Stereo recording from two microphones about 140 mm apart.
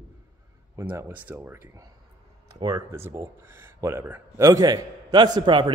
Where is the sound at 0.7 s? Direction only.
20° right (ahead or behind).